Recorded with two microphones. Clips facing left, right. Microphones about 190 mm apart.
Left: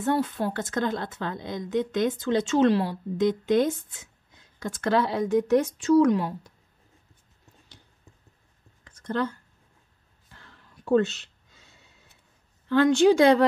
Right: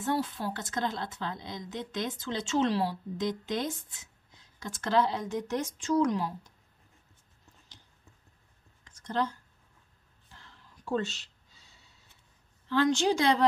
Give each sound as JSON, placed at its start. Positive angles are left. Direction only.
{"t": 0.0, "sound": "a woman's voice", "side_deg": 55}
{"t": 8.8, "sound": "a sound", "side_deg": 55}
{"t": 12.6, "sound": "a woman's voice", "side_deg": 55}